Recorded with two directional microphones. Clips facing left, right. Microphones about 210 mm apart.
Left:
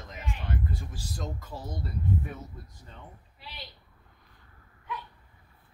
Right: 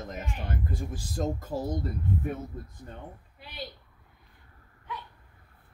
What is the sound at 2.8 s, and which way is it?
Speech, 50° right (ahead or behind).